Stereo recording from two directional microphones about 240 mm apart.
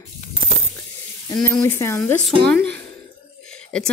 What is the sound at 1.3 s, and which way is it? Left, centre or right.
Speech, centre.